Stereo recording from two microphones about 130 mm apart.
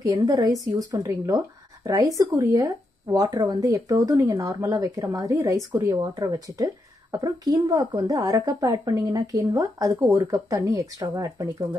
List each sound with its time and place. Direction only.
0.0 s speech: 25° right (ahead or behind)